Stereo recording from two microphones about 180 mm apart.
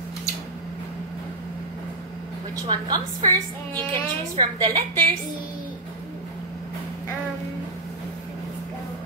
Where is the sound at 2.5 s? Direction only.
20° right (ahead or behind).